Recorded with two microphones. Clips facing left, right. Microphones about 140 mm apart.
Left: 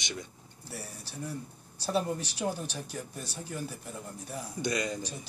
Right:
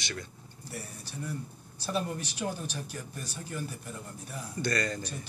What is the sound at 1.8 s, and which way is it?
Speech, 35° left (ahead or behind).